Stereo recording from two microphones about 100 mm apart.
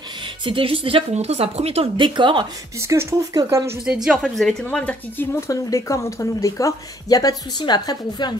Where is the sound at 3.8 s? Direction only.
10° right (ahead or behind).